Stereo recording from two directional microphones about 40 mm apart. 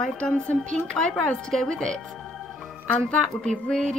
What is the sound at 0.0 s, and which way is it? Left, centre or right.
A woman's voice, left.